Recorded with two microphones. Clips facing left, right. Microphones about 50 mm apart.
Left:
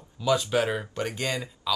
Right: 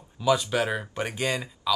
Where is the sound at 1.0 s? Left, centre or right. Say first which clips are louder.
Right 1 dB; right.